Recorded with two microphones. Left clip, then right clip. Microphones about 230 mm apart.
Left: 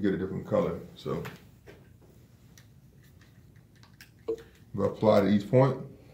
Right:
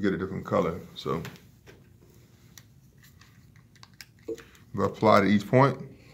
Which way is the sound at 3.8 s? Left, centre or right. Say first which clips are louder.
Left 3 dB; centre.